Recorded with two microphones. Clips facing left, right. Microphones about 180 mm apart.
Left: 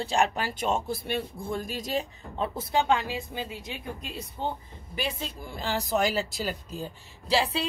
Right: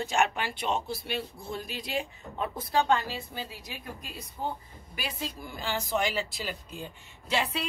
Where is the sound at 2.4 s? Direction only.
25° left (ahead or behind).